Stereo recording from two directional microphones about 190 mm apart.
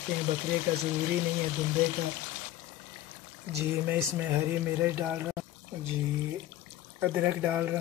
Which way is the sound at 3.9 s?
10° right (ahead or behind).